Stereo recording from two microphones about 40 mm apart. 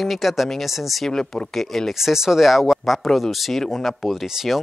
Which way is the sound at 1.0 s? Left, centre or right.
Centre.